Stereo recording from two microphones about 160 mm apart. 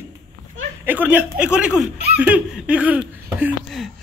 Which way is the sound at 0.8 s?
10° right (ahead or behind).